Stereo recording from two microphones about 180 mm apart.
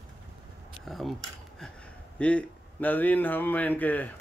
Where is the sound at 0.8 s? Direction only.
Centre (ahead or behind).